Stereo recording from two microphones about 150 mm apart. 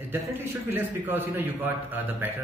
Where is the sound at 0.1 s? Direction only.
15° right (ahead or behind).